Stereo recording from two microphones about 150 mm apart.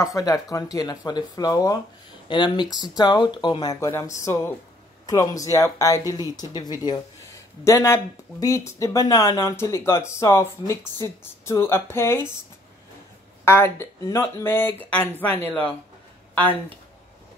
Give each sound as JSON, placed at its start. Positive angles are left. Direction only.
{"t": 0.0, "sound": "speech", "side_deg": 20}
{"t": 13.5, "sound": "speech", "side_deg": 15}